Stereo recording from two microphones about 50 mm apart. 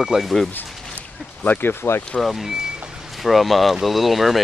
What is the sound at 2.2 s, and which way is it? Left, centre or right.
Speech, centre.